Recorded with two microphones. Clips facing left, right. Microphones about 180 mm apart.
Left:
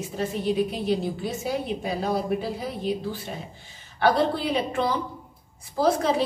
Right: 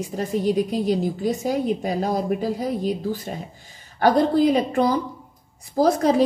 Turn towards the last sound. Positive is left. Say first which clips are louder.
# right 4 dB
turn(degrees=-40)  # may be behind; listen again after turning